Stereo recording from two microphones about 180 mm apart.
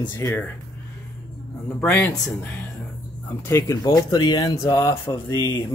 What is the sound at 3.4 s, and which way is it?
Speech, 15° left (ahead or behind).